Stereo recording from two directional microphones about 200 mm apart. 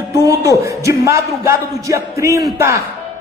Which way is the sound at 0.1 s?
15° right (ahead or behind).